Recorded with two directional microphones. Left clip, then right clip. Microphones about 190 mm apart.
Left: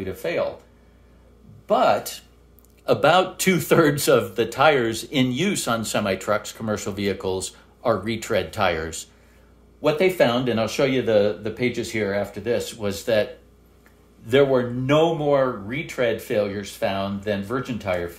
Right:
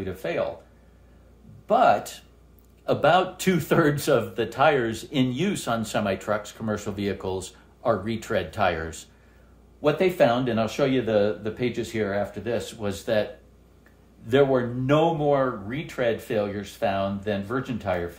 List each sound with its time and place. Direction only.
0.0 s speech: 25° left (ahead or behind)
1.7 s speech: 30° left (ahead or behind)
2.8 s speech: 40° left (ahead or behind)